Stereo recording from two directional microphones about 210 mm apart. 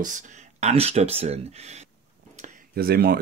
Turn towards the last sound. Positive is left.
turn(degrees=-45)  # may be behind; listen again after turning